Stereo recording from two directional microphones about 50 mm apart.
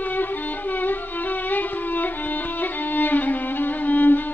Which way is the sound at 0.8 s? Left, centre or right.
Left.